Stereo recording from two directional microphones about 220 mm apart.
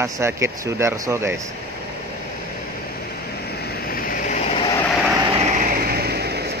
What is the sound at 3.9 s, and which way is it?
Vehicle, 40° left (ahead or behind).